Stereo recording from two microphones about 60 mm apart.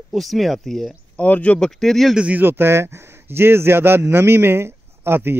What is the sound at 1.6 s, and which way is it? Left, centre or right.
Speech, centre.